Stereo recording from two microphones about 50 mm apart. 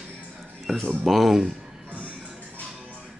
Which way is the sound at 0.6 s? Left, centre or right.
Centre.